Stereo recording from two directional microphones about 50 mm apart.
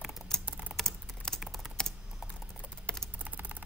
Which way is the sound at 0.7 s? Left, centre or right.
Centre.